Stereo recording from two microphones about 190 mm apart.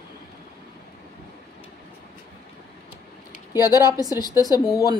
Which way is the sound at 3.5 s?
20° left (ahead or behind).